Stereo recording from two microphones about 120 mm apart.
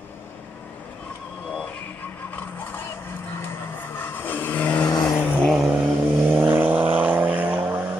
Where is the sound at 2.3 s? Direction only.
15° left (ahead or behind).